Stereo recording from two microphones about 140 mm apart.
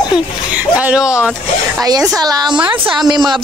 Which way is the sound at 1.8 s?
25° right (ahead or behind).